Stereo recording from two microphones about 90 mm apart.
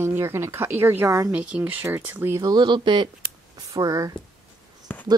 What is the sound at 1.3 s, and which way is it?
Speech, 15° right (ahead or behind).